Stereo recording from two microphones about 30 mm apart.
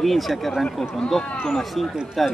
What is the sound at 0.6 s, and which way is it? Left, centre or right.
A man's voice, centre.